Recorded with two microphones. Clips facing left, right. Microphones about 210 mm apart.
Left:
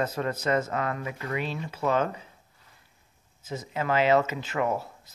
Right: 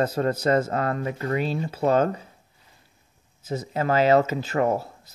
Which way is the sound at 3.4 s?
35° right (ahead or behind).